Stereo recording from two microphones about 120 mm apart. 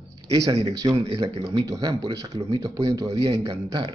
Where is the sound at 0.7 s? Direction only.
25° right (ahead or behind).